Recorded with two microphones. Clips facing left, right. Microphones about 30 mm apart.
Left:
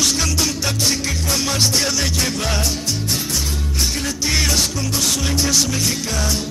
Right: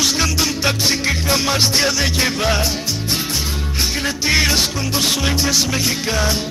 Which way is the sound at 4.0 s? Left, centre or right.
Right.